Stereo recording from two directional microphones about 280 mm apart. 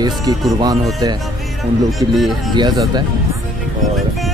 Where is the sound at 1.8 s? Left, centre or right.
Centre.